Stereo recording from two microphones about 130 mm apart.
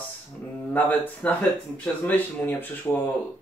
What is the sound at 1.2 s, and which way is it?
Speech, 10° left (ahead or behind).